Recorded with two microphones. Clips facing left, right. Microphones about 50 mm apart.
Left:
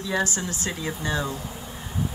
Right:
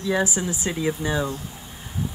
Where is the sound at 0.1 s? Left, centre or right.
Centre.